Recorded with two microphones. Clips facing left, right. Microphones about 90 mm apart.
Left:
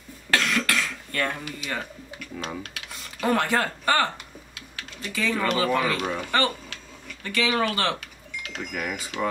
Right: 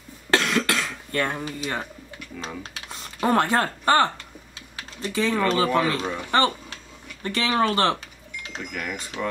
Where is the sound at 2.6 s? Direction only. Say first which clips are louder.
Right 1 dB; 30° right (ahead or behind).